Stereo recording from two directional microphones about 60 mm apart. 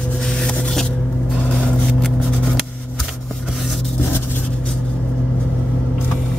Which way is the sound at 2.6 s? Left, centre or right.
Centre.